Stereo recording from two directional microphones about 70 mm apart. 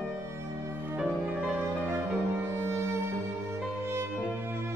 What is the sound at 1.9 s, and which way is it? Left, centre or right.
Music, right.